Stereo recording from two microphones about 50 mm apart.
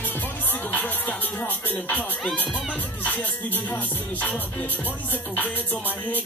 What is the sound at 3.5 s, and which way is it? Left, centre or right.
Music, left.